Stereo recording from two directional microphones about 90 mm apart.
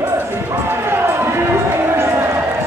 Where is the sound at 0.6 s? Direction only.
25° right (ahead or behind).